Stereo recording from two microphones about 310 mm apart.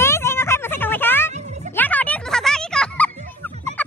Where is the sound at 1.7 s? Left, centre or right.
Centre.